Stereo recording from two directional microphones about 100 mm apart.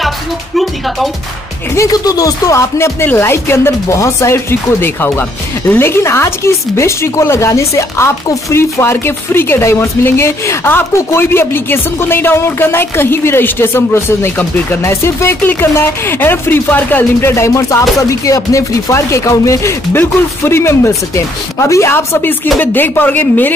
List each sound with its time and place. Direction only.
0.6 s music: centre (ahead or behind)
1.8 s speech: 35° left (ahead or behind); by 23.5 s 20° left (ahead or behind)